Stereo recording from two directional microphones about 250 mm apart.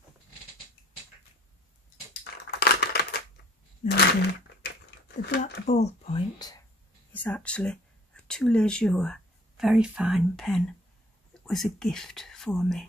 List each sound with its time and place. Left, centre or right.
2.6 s typewriter: left
3.8 s speech: left
5.0 s a sound: left
5.7 s speech: left
7.2 s speech: centre